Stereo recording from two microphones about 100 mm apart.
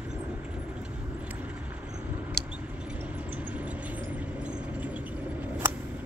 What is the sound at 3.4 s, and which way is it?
Vehicle, 15° right (ahead or behind).